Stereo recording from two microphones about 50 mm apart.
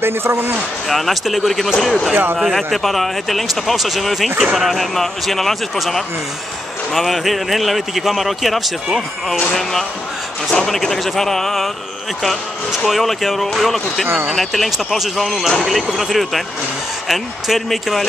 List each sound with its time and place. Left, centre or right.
0.0 s speech: right
0.8 s speech: centre